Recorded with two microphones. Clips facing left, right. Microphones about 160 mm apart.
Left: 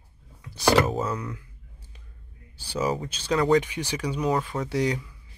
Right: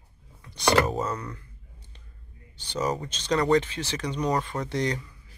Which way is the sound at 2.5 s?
10° left (ahead or behind).